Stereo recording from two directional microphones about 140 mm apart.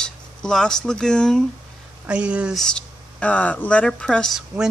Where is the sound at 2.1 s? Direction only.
10° right (ahead or behind).